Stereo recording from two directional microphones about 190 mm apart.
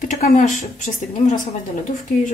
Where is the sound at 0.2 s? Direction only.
35° left (ahead or behind).